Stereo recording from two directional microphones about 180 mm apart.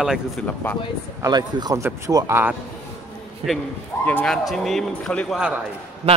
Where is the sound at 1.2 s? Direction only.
20° right (ahead or behind).